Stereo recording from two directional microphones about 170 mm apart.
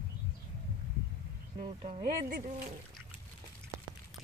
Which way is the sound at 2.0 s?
50° right (ahead or behind).